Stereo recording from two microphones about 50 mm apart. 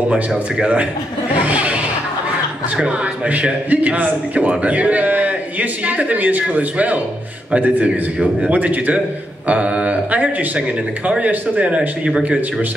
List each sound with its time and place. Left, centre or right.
0.1 s speech: centre
1.4 s a sound: right
2.8 s a man's voice: right